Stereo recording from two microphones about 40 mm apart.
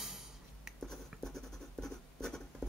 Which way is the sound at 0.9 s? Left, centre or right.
Centre.